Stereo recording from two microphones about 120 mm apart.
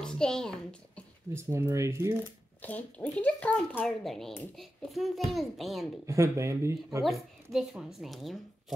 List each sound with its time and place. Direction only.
0.0 s a sound: 5° left (ahead or behind)
1.3 s speech: 20° right (ahead or behind)
2.6 s a child's voice: 15° left (ahead or behind)
3.8 s a child's voice: centre (ahead or behind)
6.0 s speech: 25° right (ahead or behind)
7.5 s a child's voice: centre (ahead or behind)